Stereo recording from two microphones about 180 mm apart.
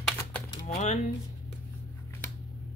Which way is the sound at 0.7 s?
40° left (ahead or behind).